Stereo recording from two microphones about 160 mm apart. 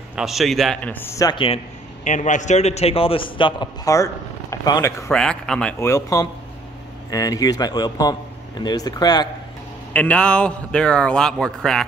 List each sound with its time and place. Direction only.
0.1 s speech: centre (ahead or behind)
0.9 s a man's voice: 15° left (ahead or behind)
2.0 s a man's voice: 50° left (ahead or behind); by 5.1 s 20° left (ahead or behind)
5.1 s speech: 5° left (ahead or behind)
5.8 s a man's voice: 20° left (ahead or behind)
9.9 s speech: 5° left (ahead or behind)